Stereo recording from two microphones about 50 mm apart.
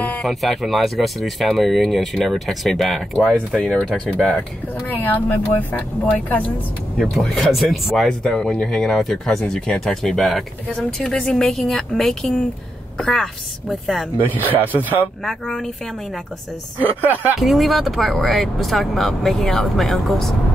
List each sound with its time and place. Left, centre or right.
0.2 s speech: centre
4.3 s speech: left
7.0 s speech: centre
8.1 s speech: centre
10.2 s speech: centre
11.1 s speech: centre
14.3 s speech: right
15.2 s speech: centre
16.8 s speech: right
17.4 s speech: centre